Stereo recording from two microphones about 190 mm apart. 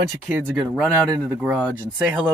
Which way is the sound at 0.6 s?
5° right (ahead or behind).